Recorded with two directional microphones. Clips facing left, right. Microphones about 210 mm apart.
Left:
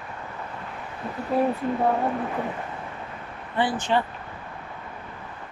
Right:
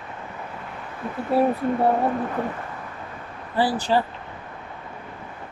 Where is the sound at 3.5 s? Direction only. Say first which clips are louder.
Right 2 dB; 35° right (ahead or behind).